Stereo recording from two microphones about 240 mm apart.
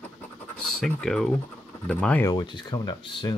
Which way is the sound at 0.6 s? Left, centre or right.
Centre.